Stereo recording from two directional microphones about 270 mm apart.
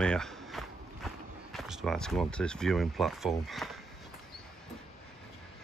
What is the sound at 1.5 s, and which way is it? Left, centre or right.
Speech, centre.